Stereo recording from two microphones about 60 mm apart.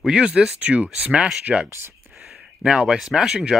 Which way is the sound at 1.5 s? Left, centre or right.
Centre.